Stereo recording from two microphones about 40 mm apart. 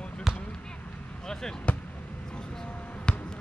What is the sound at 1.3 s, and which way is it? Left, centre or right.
Basketball bounce, centre.